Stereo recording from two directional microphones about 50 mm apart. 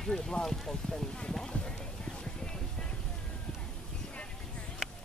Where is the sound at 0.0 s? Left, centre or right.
Centre.